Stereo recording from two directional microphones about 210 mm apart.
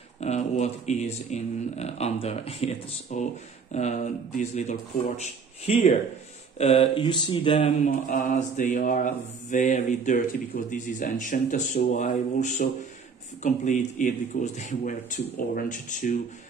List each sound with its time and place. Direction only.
0.2 s mantra: 30° left (ahead or behind)
6.6 s speech: 25° left (ahead or behind)
8.1 s mantra: 40° left (ahead or behind)